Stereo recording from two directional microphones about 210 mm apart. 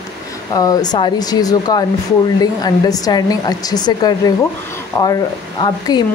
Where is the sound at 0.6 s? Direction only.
20° left (ahead or behind).